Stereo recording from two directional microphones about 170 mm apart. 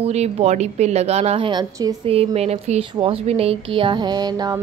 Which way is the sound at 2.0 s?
35° right (ahead or behind).